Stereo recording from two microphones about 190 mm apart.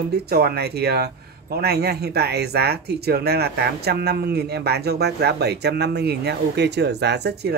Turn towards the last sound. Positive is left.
turn(degrees=-60)  # may be behind; listen again after turning